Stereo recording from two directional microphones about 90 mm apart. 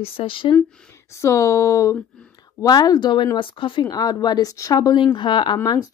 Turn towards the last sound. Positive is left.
turn(degrees=60)  # may be behind; listen again after turning